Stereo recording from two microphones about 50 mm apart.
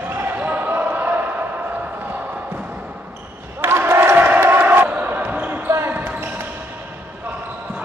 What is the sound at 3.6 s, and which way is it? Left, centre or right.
Crowd, right.